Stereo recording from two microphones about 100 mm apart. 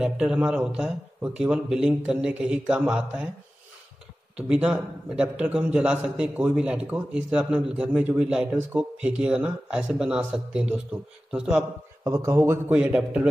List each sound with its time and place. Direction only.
0.0 s speech: 10° right (ahead or behind)
4.4 s speech: 10° right (ahead or behind)
12.1 s speech: 30° right (ahead or behind)
12.7 s speech: 10° right (ahead or behind)